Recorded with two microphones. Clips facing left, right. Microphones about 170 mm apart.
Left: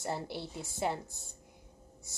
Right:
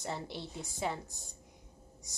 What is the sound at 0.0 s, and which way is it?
A woman's voice, 5° left (ahead or behind).